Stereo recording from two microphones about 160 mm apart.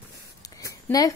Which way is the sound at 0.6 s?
20° left (ahead or behind).